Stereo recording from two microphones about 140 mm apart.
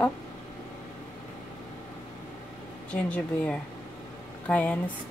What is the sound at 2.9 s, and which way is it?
Speech, 5° left (ahead or behind).